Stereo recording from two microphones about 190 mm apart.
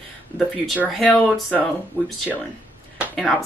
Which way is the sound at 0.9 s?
Centre (ahead or behind).